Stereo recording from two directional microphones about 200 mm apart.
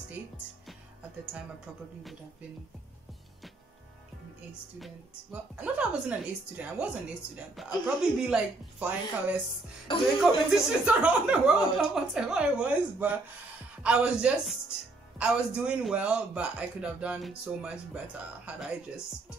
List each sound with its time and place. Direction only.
4.7 s a woman's voice: 5° right (ahead or behind)
9.9 s music: 25° left (ahead or behind)
10.3 s a man's voice: 5° right (ahead or behind)